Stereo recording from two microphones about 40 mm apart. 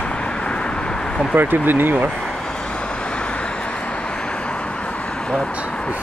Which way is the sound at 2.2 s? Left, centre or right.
Centre.